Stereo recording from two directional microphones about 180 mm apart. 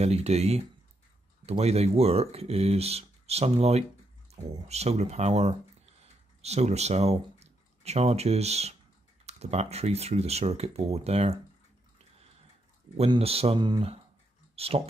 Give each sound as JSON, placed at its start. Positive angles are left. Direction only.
{"t": 0.0, "sound": "speech", "side_deg": -35}
{"t": 12.9, "sound": "speech", "side_deg": -35}
{"t": 14.5, "sound": "a sound", "side_deg": -35}